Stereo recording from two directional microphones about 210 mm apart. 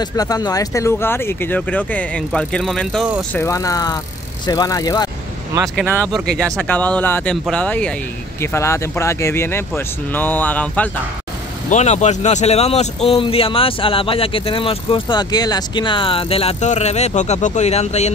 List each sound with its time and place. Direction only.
0.0 s speech: 15° left (ahead or behind); by 3.2 s centre (ahead or behind)
3.3 s speech: 15° left (ahead or behind)
6.3 s speech: 5° left (ahead or behind)
11.7 s a man's voice: 35° left (ahead or behind)